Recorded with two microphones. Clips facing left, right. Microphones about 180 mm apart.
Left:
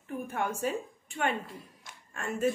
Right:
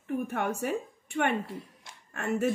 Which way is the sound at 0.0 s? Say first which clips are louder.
Right 3 dB; 65° right (ahead or behind).